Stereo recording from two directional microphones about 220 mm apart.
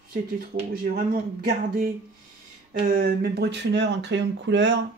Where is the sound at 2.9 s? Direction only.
45° right (ahead or behind).